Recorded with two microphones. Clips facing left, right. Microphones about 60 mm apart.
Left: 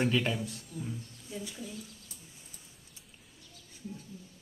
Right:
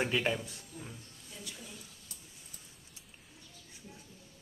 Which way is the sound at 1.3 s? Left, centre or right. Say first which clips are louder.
Left 10 dB; centre.